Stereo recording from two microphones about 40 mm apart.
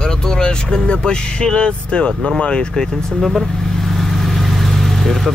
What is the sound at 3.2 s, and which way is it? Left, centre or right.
Speech, centre.